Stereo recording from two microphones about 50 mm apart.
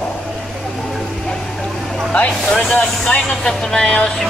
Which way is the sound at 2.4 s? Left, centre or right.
Centre.